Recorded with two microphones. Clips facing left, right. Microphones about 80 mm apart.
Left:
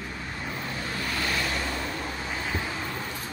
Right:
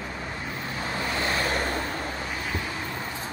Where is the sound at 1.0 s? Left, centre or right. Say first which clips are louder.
Right 3 dB; right.